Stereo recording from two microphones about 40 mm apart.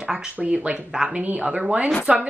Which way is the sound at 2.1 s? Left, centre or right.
Right.